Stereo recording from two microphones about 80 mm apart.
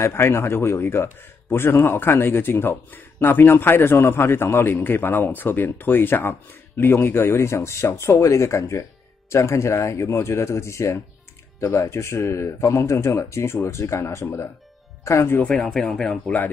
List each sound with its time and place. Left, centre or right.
0.0 s a man's voice: left
15.5 s speech: centre